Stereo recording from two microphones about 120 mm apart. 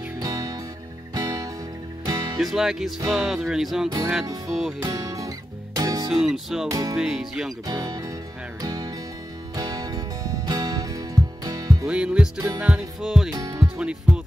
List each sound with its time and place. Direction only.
0.2 s music: 30° right (ahead or behind)
2.3 s speech: centre (ahead or behind)
4.8 s music: 30° right (ahead or behind)
6.0 s speech: 5° right (ahead or behind)
6.7 s music: 30° right (ahead or behind)
7.0 s speech: centre (ahead or behind)
7.6 s speech: 30° right (ahead or behind)
8.6 s music: 30° right (ahead or behind)
11.8 s music: 10° right (ahead or behind)
12.4 s music: 30° right (ahead or behind)
12.6 s speech: 5° right (ahead or behind)
13.3 s music: 30° right (ahead or behind)
13.7 s speech: 10° right (ahead or behind)